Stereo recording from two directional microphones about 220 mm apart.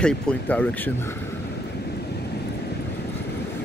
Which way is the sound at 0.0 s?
5° left (ahead or behind).